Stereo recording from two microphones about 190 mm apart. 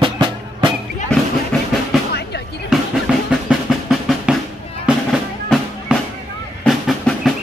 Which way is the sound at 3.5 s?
5° right (ahead or behind).